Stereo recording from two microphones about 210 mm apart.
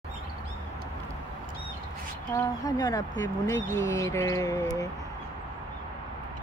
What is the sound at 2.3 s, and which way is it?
Speech, 15° left (ahead or behind).